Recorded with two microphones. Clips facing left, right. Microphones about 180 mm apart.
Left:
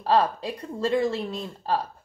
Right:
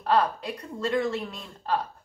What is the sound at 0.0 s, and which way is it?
Speech, 30° left (ahead or behind).